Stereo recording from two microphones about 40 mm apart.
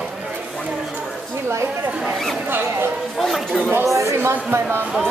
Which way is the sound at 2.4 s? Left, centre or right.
Right.